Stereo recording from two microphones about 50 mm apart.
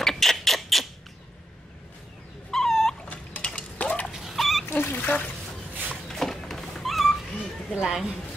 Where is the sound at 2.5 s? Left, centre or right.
Centre.